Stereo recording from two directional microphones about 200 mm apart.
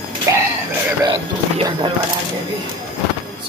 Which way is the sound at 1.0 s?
25° right (ahead or behind).